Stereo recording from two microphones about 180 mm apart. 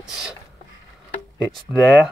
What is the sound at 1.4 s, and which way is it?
Mantra, 5° right (ahead or behind).